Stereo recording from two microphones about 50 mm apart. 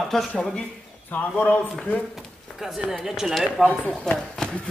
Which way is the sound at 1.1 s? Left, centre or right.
Left.